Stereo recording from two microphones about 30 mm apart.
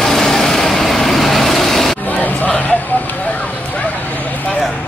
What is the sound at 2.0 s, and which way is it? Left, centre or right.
Music, left.